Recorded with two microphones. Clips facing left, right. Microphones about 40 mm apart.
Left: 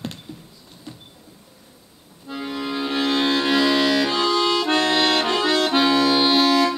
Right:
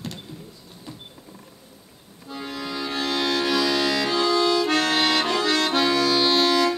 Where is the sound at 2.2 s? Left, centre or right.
Left.